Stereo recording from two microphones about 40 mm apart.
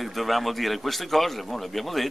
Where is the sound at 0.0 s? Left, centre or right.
Centre.